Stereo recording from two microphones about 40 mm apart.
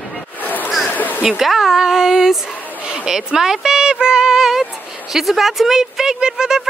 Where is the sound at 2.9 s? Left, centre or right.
Centre.